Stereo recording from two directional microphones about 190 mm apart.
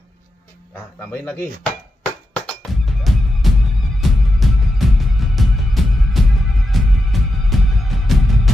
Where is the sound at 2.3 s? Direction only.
Centre (ahead or behind).